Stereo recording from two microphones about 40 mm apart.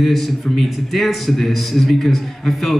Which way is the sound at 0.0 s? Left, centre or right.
Centre.